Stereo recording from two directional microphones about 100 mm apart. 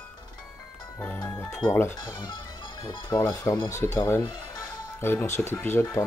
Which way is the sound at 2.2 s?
45° left (ahead or behind).